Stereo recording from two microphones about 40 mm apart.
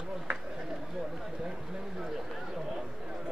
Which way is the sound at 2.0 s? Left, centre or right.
Centre.